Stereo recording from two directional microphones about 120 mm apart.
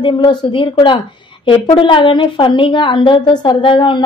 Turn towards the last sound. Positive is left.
turn(degrees=45)  # may be behind; listen again after turning